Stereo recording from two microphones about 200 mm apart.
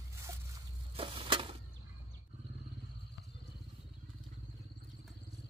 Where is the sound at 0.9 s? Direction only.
25° right (ahead or behind).